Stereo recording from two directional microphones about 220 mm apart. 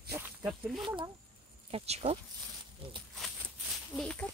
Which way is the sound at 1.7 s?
30° right (ahead or behind).